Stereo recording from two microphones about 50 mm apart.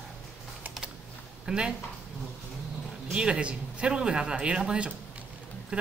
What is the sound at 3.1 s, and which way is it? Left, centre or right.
Speech, centre.